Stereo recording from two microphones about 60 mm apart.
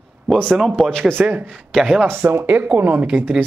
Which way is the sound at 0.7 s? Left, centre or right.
Centre.